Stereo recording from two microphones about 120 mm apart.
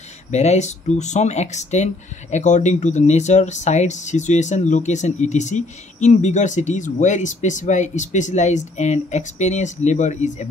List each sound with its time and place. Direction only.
0.3 s speech: 70° left (ahead or behind)
2.3 s speech: 85° left